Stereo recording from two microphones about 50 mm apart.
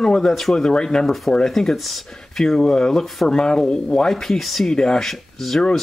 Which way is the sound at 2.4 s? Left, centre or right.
Centre.